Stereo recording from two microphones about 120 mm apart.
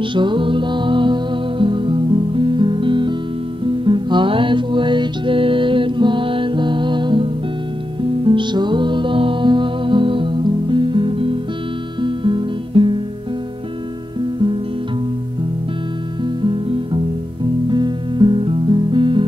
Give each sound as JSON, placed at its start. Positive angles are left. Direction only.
{"t": 0.0, "sound": "music", "side_deg": -40}
{"t": 16.3, "sound": "music", "side_deg": -40}